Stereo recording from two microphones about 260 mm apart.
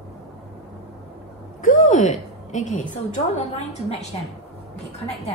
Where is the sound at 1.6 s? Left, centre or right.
Left.